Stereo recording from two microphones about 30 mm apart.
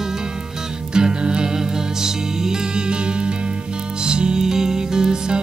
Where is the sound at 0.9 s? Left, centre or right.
Right.